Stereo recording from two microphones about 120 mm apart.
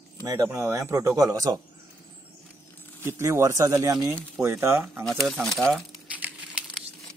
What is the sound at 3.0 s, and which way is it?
Speech, 20° right (ahead or behind).